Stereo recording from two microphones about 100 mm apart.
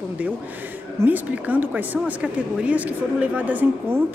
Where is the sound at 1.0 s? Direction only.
15° right (ahead or behind).